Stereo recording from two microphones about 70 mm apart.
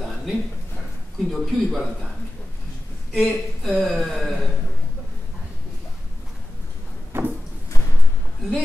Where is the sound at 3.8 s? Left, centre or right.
Centre.